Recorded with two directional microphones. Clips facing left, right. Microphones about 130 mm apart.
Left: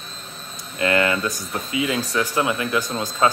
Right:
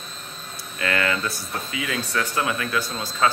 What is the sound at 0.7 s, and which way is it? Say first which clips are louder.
Speech: left 4 dB; 25° left (ahead or behind).